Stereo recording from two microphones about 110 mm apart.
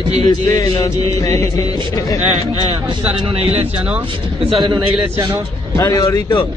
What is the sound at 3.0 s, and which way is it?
Speech, 65° right (ahead or behind).